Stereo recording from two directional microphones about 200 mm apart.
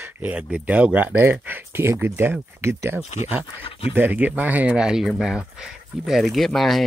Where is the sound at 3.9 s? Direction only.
10° right (ahead or behind).